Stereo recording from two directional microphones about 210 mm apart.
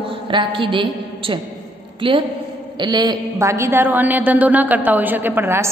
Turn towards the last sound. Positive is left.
turn(degrees=-10)  # may be behind; listen again after turning